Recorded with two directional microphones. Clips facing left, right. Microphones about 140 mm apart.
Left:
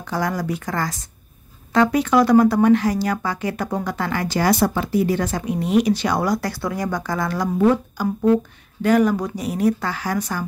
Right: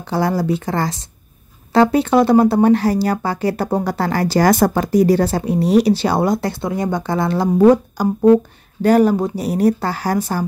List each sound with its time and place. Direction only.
0.0 s speech: 30° right (ahead or behind)
7.5 s speech: 40° right (ahead or behind)